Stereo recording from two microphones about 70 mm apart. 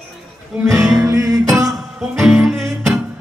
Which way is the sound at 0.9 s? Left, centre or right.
Right.